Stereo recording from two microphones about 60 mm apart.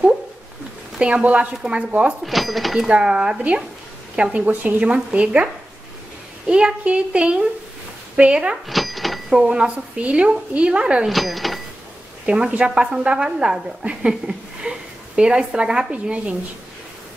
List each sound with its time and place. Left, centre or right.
0.9 s speech: centre
2.2 s speech: centre
2.9 s a woman's voice: centre
8.6 s a sound: centre
9.3 s a woman's voice: centre
11.1 s speech: centre
12.3 s a woman's voice: centre